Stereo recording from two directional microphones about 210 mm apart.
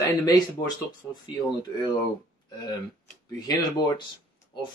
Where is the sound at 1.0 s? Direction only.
5° left (ahead or behind).